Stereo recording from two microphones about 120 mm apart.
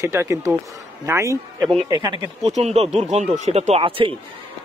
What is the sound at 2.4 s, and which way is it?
Speech, 65° right (ahead or behind).